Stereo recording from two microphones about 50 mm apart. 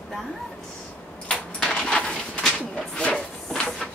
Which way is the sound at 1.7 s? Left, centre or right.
Centre.